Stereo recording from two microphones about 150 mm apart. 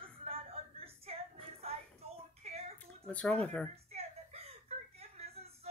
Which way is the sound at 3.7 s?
45° right (ahead or behind).